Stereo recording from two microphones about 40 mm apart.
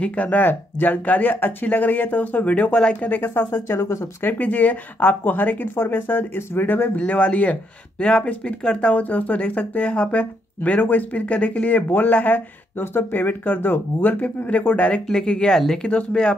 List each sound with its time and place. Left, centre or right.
0.0 s speech: left
0.4 s speech: left
2.4 s speech: left
2.7 s speech: left
3.0 s speech: left
3.3 s speech: left
4.3 s speech: left
7.1 s speech: left
9.1 s speech: left
11.2 s speech: left
11.9 s speech: left
12.8 s speech: left
14.2 s speech: left
15.0 s speech: centre